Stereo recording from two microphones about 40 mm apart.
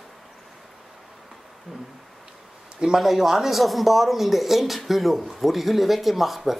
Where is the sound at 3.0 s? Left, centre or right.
Centre.